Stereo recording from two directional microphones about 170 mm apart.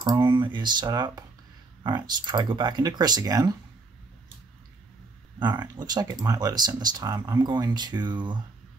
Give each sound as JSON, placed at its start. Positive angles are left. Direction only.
{"t": 0.0, "sound": "speech", "side_deg": -25}
{"t": 5.4, "sound": "speech", "side_deg": -25}